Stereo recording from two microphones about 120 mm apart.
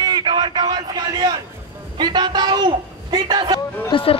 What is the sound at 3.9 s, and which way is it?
Speech, 50° left (ahead or behind).